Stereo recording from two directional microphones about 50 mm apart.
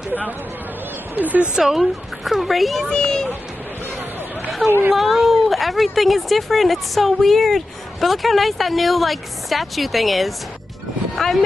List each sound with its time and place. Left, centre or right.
1.1 s speech: right
1.5 s speech: centre
2.9 s speech: centre
4.6 s a woman's voice: right
4.9 s speech: centre